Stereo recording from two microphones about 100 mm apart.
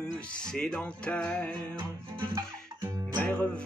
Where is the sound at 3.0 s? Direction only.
10° left (ahead or behind).